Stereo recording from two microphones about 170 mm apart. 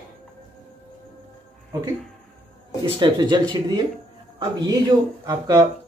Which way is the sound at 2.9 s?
25° right (ahead or behind).